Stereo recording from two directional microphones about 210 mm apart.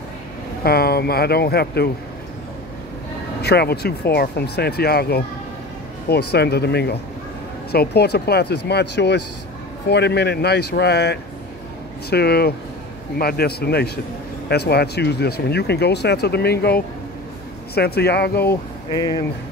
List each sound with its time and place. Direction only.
0.7 s speech: 45° left (ahead or behind)
3.4 s speech: 50° left (ahead or behind)
18.5 s speech: 20° left (ahead or behind)